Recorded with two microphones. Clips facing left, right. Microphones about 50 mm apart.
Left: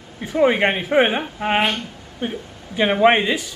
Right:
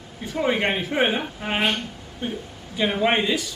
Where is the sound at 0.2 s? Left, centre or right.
Left.